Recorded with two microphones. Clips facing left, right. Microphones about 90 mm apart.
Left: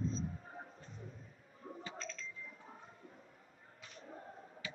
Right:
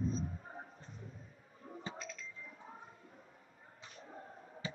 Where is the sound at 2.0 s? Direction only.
10° right (ahead or behind).